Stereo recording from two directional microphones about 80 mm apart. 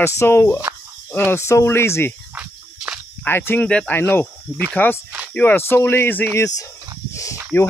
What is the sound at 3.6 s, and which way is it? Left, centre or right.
Speech, centre.